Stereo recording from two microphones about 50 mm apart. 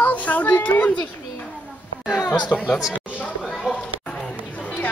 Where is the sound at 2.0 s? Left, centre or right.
Centre.